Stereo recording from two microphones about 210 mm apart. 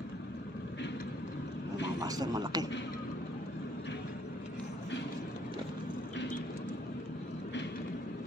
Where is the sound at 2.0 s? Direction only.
15° right (ahead or behind).